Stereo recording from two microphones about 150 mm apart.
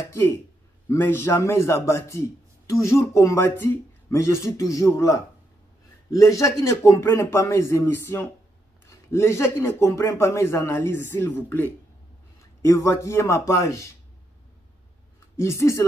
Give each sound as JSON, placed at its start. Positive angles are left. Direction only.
{"t": 0.0, "sound": "a man's voice", "side_deg": 20}
{"t": 15.3, "sound": "a man's voice", "side_deg": 20}